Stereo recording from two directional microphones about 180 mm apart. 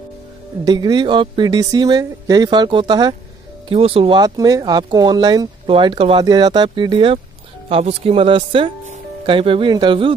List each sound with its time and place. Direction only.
0.7 s speech: 25° right (ahead or behind)